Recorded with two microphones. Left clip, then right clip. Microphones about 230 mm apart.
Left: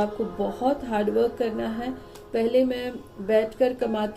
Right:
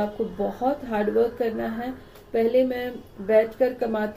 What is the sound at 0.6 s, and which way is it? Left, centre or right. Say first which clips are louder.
Speech: left 1 dB; centre.